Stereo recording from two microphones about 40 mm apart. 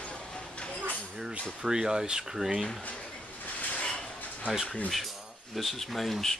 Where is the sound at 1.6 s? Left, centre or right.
Centre.